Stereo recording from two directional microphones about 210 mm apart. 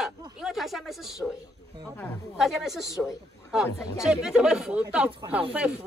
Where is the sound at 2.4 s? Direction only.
Centre (ahead or behind).